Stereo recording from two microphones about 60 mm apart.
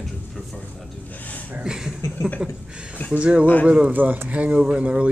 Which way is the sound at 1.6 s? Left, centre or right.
Centre.